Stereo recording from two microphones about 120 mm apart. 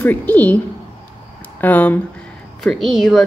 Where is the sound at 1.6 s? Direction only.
15° left (ahead or behind).